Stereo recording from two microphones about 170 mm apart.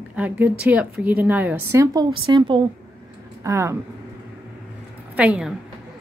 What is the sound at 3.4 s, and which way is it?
Speech, 15° right (ahead or behind).